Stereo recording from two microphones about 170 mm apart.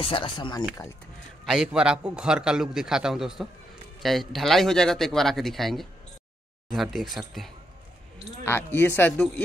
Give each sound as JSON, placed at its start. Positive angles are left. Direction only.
{"t": 0.0, "sound": "speech", "side_deg": 30}
{"t": 1.4, "sound": "a man's voice", "side_deg": 0}
{"t": 8.5, "sound": "speech", "side_deg": 15}